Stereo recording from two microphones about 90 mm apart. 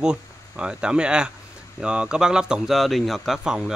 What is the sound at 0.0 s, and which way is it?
Speech, 10° right (ahead or behind).